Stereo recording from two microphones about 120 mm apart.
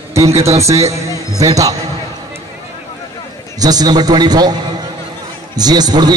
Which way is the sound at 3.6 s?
30° right (ahead or behind).